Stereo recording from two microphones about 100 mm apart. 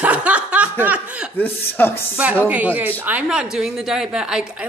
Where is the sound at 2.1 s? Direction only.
15° right (ahead or behind).